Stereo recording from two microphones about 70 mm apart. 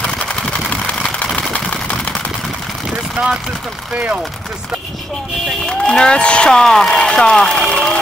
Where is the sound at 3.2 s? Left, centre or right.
Right.